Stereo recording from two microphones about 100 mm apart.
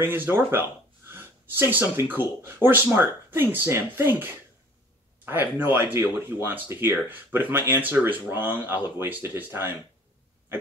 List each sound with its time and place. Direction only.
0.0 s speech: 20° right (ahead or behind)